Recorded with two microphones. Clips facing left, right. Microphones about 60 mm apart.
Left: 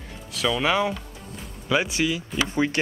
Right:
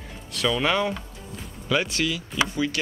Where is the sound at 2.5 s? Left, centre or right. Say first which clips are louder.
Left 3 dB; left.